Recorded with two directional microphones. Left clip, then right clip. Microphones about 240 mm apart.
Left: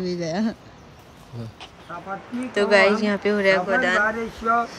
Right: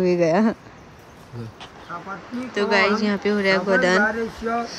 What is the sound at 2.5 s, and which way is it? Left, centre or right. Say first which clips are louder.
Speech: left 2 dB; centre.